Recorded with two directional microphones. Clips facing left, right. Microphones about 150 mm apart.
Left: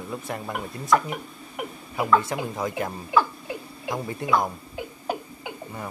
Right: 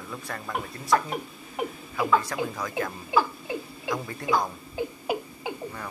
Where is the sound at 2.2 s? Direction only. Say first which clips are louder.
Left 2 dB; 25° left (ahead or behind).